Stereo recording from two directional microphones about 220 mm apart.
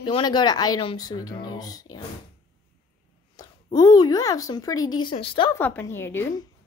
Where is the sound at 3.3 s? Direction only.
15° left (ahead or behind).